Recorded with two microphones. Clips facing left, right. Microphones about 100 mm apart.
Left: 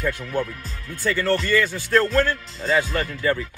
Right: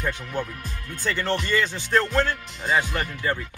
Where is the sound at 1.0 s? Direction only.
20° right (ahead or behind).